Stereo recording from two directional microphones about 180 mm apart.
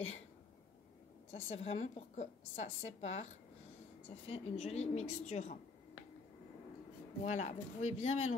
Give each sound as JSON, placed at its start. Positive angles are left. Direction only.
{"t": 1.3, "sound": "a woman's voice", "side_deg": 35}
{"t": 4.3, "sound": "a woman's voice", "side_deg": 35}
{"t": 7.2, "sound": "a woman's voice", "side_deg": 40}